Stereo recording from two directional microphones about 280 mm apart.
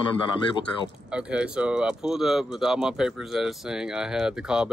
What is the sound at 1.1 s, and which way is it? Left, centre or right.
Speech, centre.